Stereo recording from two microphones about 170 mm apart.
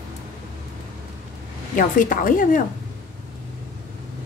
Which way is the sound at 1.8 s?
50° left (ahead or behind).